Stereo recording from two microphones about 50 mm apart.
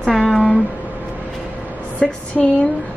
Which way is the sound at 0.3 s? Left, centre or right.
Centre.